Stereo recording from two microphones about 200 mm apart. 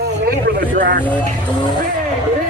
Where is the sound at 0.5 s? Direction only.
45° right (ahead or behind).